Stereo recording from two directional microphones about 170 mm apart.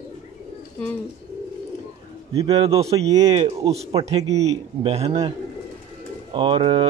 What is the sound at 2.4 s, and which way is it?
Speech, 35° right (ahead or behind).